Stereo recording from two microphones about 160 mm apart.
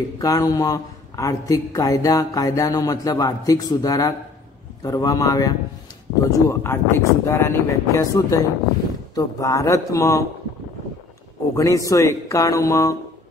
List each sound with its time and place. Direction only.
0.2 s a man's voice: 20° left (ahead or behind)
11.5 s a man's voice: 20° left (ahead or behind)